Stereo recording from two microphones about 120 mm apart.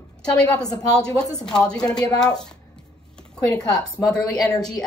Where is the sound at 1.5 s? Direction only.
5° left (ahead or behind).